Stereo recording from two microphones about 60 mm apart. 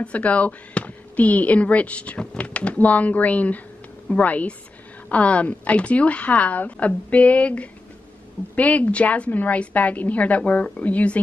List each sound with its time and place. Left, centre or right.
0.0 s speech: left